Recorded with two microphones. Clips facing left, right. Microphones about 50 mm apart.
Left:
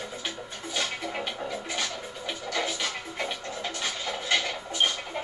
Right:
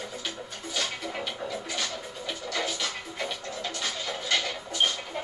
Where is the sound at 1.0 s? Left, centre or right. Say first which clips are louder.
Left 1 dB; centre.